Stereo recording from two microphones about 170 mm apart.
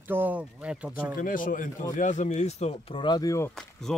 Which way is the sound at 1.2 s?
50° left (ahead or behind).